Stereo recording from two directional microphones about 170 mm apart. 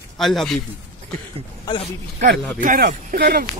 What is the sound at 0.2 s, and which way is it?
Speech, centre (ahead or behind).